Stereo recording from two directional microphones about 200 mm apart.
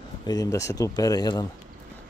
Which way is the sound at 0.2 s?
20° left (ahead or behind).